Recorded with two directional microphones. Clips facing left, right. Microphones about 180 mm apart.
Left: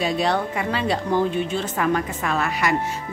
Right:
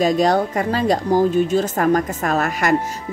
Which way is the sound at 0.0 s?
40° right (ahead or behind).